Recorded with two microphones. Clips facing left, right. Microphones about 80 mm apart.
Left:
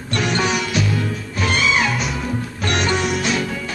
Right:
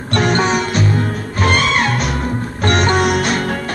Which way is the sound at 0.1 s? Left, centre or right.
Right.